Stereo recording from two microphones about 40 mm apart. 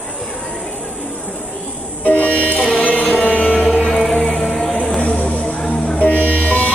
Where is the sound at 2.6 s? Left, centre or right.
Left.